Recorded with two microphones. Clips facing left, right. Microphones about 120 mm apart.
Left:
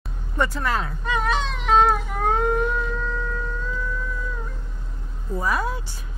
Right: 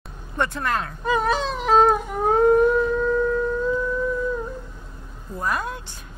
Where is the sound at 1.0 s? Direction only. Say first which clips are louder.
Right 4 dB; 35° right (ahead or behind).